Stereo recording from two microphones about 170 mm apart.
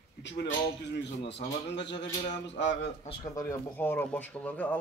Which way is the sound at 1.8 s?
90° left.